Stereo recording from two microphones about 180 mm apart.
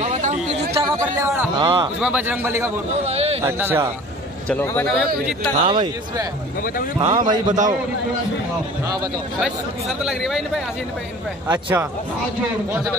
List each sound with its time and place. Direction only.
0.0 s chatter: 40° right (ahead or behind)
1.2 s a man's voice: 10° right (ahead or behind)
1.6 s a man's voice: 25° right (ahead or behind)
2.0 s a man's voice: 10° right (ahead or behind)
3.1 s a man's voice: 35° right (ahead or behind)
3.4 s a man's voice: 10° right (ahead or behind)
4.5 s a man's voice: 10° left (ahead or behind)
5.7 s a man's voice: 25° right (ahead or behind)
9.4 s a man's voice: 5° right (ahead or behind)